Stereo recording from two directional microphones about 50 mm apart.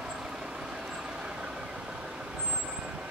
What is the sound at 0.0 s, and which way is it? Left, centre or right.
Vehicle, centre.